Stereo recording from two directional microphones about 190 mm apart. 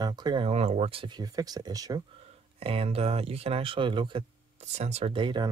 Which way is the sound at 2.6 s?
30° right (ahead or behind).